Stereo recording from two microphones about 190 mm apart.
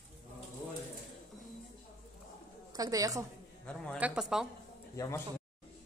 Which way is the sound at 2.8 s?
20° right (ahead or behind).